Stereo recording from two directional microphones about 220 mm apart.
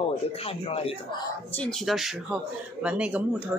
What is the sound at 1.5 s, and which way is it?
Speech, 5° left (ahead or behind).